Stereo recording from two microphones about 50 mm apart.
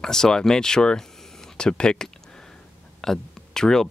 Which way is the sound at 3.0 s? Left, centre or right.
Centre.